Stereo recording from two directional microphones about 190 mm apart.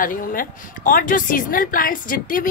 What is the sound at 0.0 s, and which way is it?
A woman's voice, 45° left (ahead or behind).